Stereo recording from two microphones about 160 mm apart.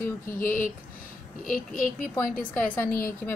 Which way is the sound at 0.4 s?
60° left (ahead or behind).